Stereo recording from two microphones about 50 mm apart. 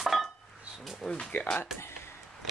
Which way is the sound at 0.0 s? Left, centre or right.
Centre.